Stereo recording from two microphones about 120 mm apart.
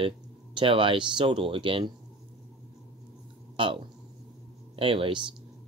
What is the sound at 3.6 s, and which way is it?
Speech, 45° right (ahead or behind).